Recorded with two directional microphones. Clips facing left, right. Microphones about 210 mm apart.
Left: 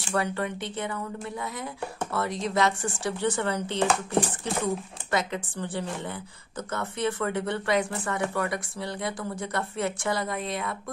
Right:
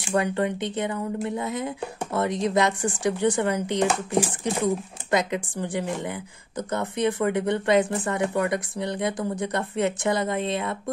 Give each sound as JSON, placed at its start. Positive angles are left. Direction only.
{"t": 0.0, "sound": "speech", "side_deg": -15}